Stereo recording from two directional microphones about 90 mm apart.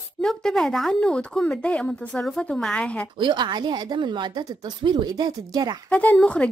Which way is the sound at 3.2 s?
55° right (ahead or behind).